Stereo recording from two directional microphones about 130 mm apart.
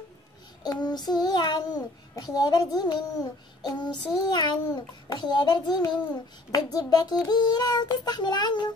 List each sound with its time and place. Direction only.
0.7 s child singing: 30° left (ahead or behind)